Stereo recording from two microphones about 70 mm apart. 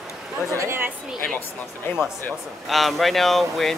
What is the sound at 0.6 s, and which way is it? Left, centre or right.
Speech, right.